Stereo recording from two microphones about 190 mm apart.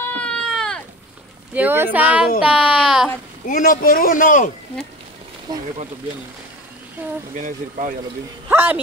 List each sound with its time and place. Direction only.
0.0 s a sound: 5° left (ahead or behind)
1.5 s speech: 10° right (ahead or behind)
3.4 s speech: 45° left (ahead or behind)
7.3 s speech: 45° right (ahead or behind)
8.5 s speech: 10° right (ahead or behind)